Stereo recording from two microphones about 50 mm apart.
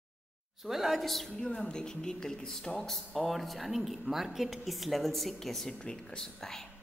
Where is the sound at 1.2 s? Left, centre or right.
Centre.